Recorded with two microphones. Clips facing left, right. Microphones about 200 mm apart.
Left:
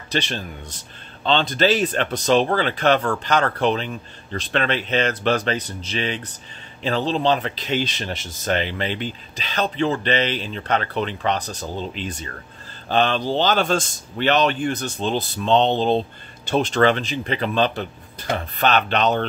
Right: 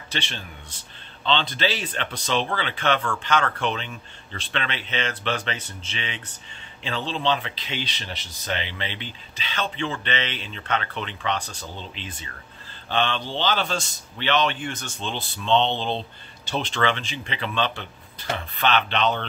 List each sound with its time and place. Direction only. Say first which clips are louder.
0.1 s a man's voice: left 8 dB; 40° left (ahead or behind)